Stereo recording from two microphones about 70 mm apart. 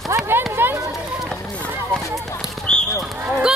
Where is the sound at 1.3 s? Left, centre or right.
Centre.